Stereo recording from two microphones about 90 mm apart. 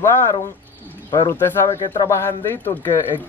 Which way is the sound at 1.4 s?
25° left (ahead or behind).